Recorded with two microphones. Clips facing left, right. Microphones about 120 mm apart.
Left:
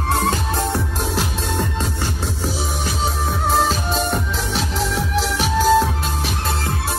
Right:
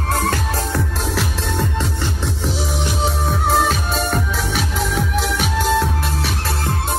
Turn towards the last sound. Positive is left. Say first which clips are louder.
# left 3 dB
turn(degrees=0)  # may be behind; listen again after turning